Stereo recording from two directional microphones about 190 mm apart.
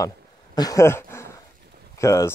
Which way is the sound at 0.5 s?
20° left (ahead or behind).